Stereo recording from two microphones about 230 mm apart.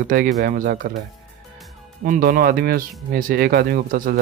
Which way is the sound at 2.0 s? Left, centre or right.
Right.